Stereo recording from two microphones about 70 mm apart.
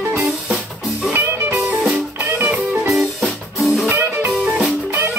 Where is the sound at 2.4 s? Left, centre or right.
Right.